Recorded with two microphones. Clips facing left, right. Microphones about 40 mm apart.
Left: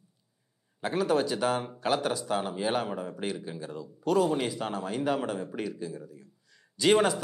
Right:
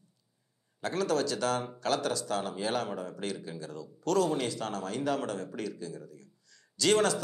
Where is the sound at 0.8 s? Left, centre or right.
Centre.